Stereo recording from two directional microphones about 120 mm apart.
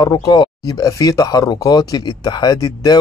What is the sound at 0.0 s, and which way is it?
Speech, 35° left (ahead or behind).